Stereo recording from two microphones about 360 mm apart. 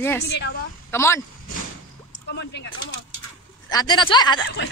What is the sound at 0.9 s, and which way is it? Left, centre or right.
Speech, centre.